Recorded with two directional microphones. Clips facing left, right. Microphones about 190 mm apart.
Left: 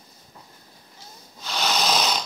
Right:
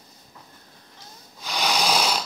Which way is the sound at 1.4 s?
10° right (ahead or behind).